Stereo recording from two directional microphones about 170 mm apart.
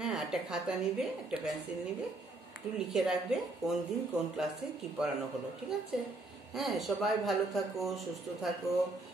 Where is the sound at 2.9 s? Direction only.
5° right (ahead or behind).